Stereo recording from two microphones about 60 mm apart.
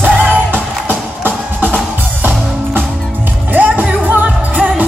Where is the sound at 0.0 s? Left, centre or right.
Right.